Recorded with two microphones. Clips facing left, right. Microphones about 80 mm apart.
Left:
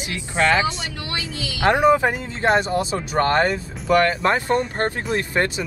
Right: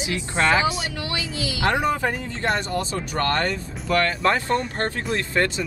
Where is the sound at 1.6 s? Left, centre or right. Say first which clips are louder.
Left 6 dB; left.